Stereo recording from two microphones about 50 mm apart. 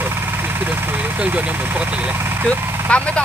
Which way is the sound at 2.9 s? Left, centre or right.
Left.